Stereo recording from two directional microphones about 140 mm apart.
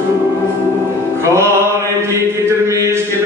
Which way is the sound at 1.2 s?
20° right (ahead or behind).